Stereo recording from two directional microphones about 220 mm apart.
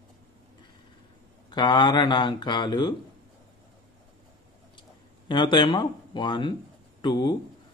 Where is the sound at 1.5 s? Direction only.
20° left (ahead or behind).